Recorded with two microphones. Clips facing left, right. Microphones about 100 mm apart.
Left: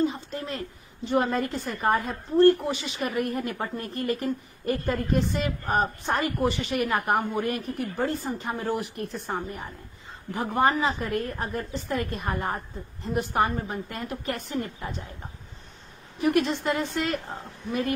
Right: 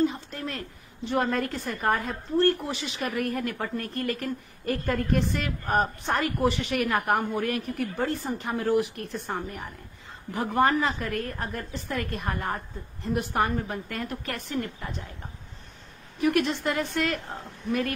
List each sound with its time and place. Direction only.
0.0 s a woman's voice: centre (ahead or behind)
16.2 s a woman's voice: centre (ahead or behind)